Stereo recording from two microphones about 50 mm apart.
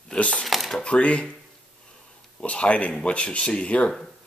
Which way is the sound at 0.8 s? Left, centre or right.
Left.